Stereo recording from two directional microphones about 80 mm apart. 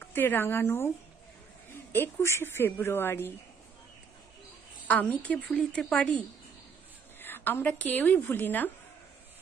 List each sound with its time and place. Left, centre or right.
0.0 s speech: left
1.9 s a woman's voice: left
4.8 s speech: centre
7.2 s a woman's voice: left